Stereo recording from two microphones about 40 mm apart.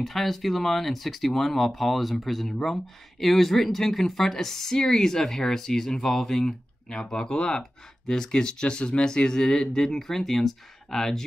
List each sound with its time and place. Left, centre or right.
0.0 s speech: centre